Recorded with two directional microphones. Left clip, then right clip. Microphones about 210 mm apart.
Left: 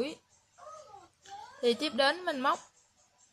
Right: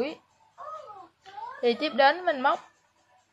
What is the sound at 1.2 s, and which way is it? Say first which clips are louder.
Speech: right 5 dB; 15° left (ahead or behind).